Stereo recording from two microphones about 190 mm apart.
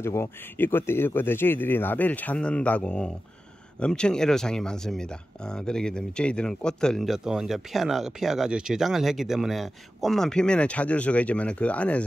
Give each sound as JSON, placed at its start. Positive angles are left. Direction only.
{"t": 0.0, "sound": "speech", "side_deg": 15}